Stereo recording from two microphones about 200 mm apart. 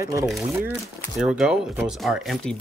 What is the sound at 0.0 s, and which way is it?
Speech, 15° right (ahead or behind).